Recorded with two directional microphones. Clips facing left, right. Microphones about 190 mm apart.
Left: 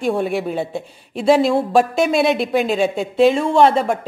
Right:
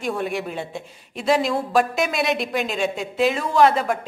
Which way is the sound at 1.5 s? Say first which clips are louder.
Left 5 dB; 30° left (ahead or behind).